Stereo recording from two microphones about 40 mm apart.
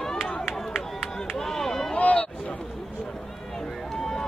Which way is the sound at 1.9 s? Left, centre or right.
Left.